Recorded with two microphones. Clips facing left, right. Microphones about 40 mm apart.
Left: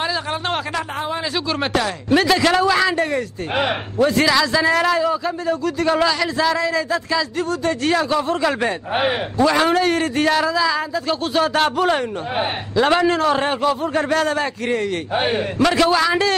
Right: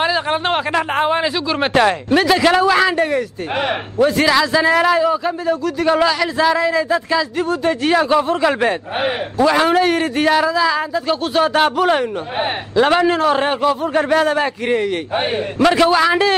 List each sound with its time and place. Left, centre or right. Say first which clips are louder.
0.0 s speech: right 5 dB; right
0.9 s speech: right 8 dB; right
2.0 s a man's voice: right 2 dB; centre